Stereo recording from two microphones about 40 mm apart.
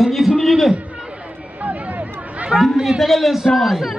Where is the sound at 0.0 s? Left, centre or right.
Centre.